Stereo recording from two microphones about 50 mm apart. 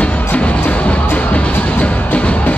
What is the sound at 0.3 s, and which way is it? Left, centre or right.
Music, left.